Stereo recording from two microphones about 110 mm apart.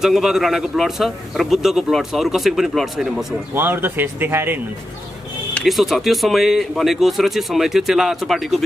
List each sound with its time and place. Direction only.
0.0 s speech: 5° right (ahead or behind)
3.5 s speech: 20° right (ahead or behind)
5.6 s speech: centre (ahead or behind)